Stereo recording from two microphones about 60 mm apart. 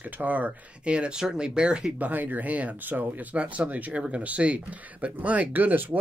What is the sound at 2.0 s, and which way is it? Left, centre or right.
Speech, right.